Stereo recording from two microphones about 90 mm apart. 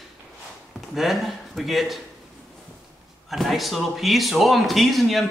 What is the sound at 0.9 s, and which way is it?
Speech, centre (ahead or behind).